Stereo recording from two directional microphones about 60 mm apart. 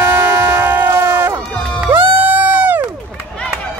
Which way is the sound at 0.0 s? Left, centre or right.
Right.